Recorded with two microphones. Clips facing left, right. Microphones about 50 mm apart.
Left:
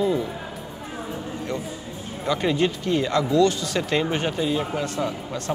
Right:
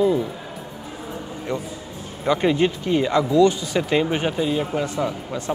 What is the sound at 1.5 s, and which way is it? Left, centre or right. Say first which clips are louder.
A man's voice: right 2 dB; right.